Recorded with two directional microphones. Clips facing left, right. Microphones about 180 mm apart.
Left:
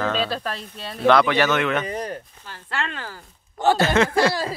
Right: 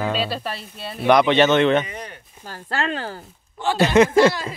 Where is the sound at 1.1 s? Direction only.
20° right (ahead or behind).